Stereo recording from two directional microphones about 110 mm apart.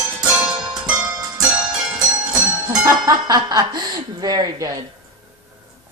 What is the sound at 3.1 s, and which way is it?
Speech, 40° right (ahead or behind).